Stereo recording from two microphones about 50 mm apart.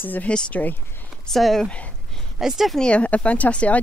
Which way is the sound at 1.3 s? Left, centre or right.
Centre.